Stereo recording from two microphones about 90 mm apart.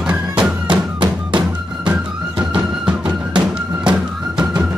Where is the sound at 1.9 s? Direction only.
15° right (ahead or behind).